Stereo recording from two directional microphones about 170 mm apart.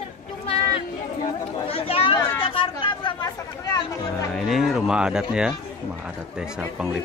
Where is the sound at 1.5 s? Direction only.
35° left (ahead or behind).